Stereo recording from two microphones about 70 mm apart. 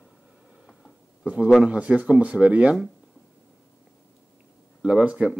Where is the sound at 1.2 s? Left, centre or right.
Centre.